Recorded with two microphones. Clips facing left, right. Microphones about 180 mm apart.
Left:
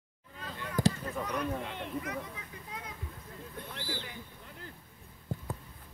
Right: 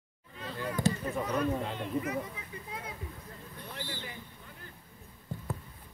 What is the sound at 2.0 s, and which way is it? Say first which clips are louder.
Speech: right 4 dB; 5° right (ahead or behind).